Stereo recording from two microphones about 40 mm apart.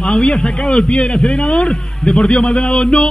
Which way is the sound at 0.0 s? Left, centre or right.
Centre.